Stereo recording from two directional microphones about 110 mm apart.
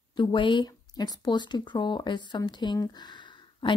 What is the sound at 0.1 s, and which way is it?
Speech, 45° left (ahead or behind).